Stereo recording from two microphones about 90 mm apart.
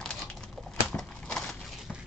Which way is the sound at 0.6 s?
5° left (ahead or behind).